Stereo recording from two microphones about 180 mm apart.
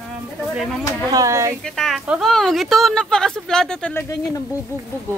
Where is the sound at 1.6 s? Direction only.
Centre (ahead or behind).